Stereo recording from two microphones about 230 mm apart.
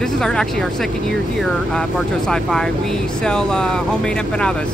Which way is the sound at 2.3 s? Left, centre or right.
Centre.